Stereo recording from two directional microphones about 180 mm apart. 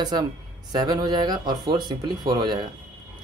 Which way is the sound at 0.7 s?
20° right (ahead or behind).